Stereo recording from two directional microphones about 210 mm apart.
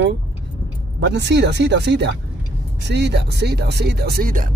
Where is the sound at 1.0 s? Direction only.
55° right (ahead or behind).